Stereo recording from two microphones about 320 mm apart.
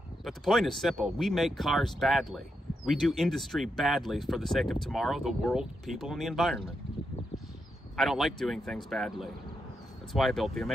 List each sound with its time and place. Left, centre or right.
0.2 s speech: centre
7.9 s speech: centre